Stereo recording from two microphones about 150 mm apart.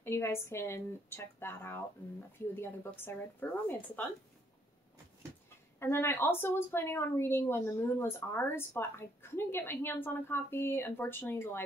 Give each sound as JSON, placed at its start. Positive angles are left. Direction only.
{"t": 0.0, "sound": "a woman's voice", "side_deg": 15}
{"t": 5.8, "sound": "a woman's voice", "side_deg": 15}